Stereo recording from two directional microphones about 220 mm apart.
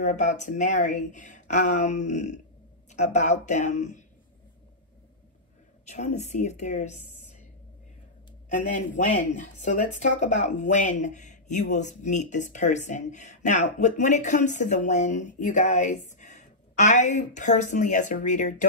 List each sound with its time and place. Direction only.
0.0 s speech: 35° left (ahead or behind)
5.9 s speech: 30° left (ahead or behind)
8.5 s speech: 35° left (ahead or behind)